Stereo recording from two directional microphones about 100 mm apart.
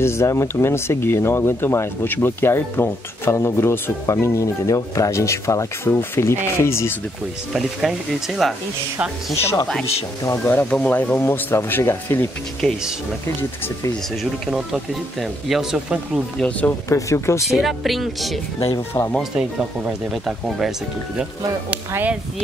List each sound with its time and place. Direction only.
0.0 s speech: 25° left (ahead or behind)
7.5 s speech: 5° right (ahead or behind)
10.4 s speech: 15° left (ahead or behind)
12.6 s speech: centre (ahead or behind)
14.5 s speech: centre (ahead or behind)
16.3 s speech: 15° left (ahead or behind)
16.9 s speech: 30° left (ahead or behind)
17.6 s speech: centre (ahead or behind)
18.9 s speech: 30° left (ahead or behind)
19.3 s speech: 5° right (ahead or behind)
21.9 s speech: 15° right (ahead or behind)